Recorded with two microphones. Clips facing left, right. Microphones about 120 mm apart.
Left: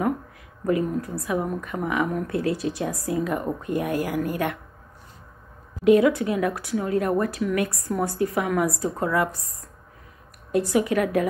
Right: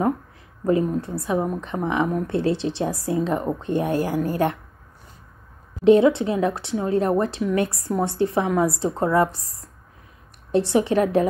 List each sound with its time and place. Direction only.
0.7 s a woman's voice: 25° right (ahead or behind)
5.9 s a woman's voice: 25° right (ahead or behind)